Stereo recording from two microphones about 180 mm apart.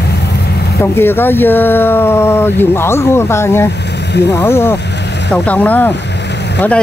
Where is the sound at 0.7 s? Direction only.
10° left (ahead or behind).